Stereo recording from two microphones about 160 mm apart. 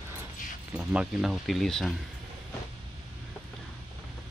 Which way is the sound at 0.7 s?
5° right (ahead or behind).